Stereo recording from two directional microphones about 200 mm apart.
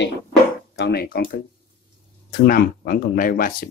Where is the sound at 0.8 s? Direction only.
50° left (ahead or behind).